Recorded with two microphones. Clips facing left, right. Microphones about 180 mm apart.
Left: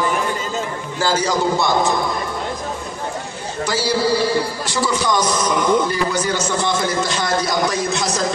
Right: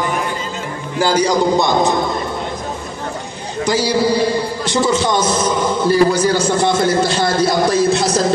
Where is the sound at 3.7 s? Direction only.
15° right (ahead or behind).